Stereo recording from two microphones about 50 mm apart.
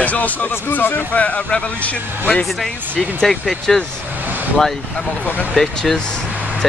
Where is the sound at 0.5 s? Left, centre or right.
Left.